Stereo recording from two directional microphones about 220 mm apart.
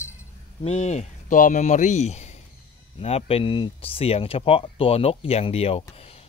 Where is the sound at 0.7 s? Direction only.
30° left (ahead or behind).